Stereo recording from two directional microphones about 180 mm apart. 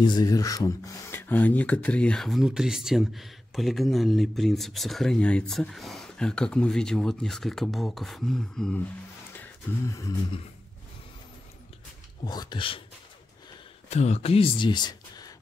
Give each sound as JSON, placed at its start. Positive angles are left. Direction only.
{"t": 0.0, "sound": "speech", "side_deg": 20}
{"t": 12.3, "sound": "speech", "side_deg": 25}
{"t": 13.8, "sound": "speech", "side_deg": 35}